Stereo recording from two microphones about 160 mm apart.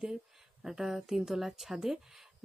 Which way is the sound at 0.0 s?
5° right (ahead or behind).